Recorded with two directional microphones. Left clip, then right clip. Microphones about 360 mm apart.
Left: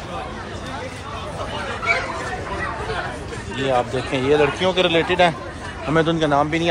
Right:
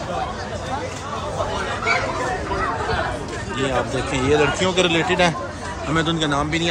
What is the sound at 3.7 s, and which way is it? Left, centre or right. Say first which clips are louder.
Speech: left 4 dB; centre.